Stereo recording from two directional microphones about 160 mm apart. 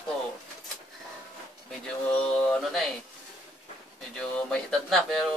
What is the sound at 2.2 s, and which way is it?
Mantra, 5° left (ahead or behind).